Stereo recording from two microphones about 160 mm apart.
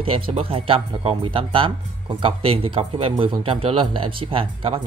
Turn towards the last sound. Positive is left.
turn(degrees=-35)  # may be behind; listen again after turning